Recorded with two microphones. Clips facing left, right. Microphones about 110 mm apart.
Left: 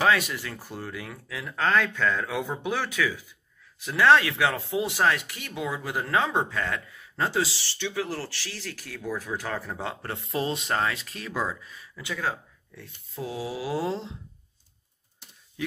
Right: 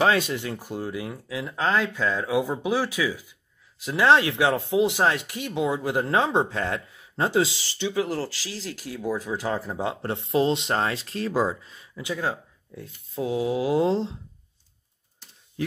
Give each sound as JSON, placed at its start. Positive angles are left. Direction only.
{"t": 0.0, "sound": "speech", "side_deg": -30}